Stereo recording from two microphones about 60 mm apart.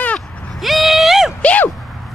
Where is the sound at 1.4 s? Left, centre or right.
Left.